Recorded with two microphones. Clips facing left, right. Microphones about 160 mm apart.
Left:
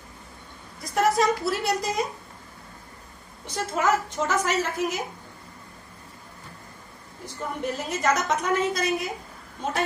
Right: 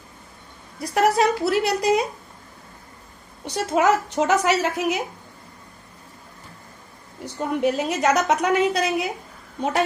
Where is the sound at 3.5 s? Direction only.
70° right (ahead or behind).